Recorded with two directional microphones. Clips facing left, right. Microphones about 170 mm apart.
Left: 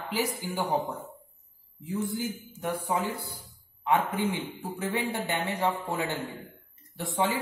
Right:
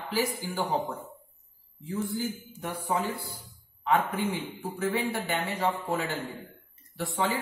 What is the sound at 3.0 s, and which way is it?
A man's voice, 20° left (ahead or behind).